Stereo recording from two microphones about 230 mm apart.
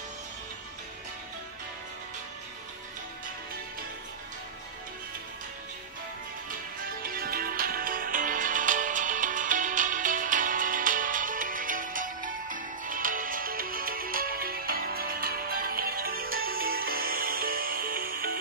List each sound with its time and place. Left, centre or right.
7.0 s music: right